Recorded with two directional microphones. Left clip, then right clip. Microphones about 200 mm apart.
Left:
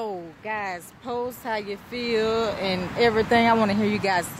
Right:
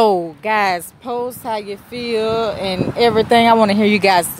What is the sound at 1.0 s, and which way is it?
Speech, 20° right (ahead or behind).